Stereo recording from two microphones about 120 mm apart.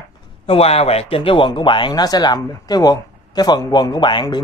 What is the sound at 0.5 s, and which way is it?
Speech, 55° left (ahead or behind).